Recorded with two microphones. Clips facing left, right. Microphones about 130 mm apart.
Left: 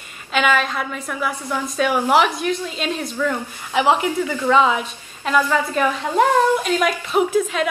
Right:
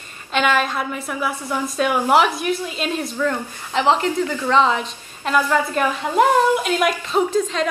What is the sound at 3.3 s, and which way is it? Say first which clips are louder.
Speech: even; 10° left (ahead or behind).